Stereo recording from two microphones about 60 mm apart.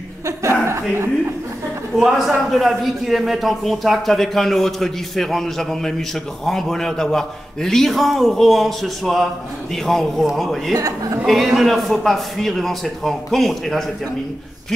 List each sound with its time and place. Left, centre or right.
0.7 s a sound: right
2.0 s a man's voice: centre
10.7 s a woman's voice: right
11.2 s a man's voice: centre